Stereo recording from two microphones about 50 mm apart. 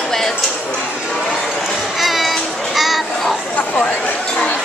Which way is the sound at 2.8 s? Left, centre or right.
Centre.